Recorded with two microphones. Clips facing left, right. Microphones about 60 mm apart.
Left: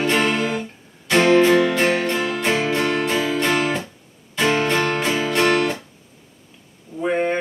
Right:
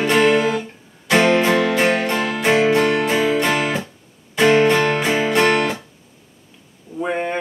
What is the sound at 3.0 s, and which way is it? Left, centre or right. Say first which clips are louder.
Music: right 3 dB; centre.